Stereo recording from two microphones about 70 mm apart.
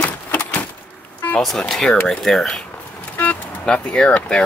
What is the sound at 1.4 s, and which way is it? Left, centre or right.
Speech, centre.